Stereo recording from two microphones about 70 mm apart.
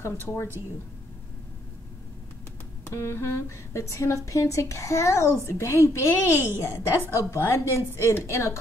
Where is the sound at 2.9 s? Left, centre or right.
Left.